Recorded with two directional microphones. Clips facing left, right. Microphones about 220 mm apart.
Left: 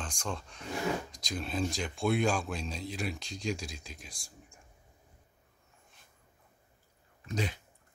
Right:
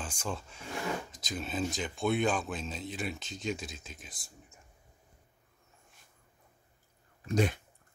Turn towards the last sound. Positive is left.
turn(degrees=-50)  # may be behind; listen again after turning